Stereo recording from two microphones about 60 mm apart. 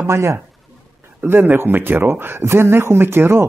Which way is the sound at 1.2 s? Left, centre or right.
Right.